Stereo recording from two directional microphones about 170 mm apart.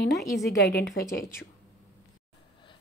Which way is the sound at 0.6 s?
70° left (ahead or behind).